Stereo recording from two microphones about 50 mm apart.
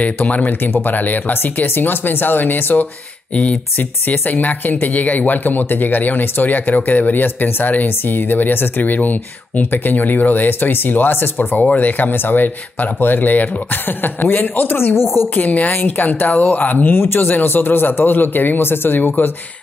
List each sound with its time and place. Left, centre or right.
0.0 s speech: left
4.1 s speech: left
15.3 s speech: left
16.9 s speech: left